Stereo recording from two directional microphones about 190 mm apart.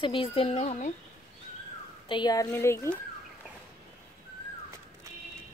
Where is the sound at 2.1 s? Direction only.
20° left (ahead or behind).